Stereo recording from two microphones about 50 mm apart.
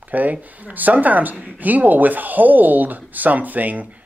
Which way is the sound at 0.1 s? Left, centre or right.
Right.